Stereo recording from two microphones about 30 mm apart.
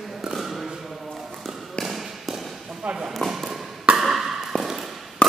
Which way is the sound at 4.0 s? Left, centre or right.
Centre.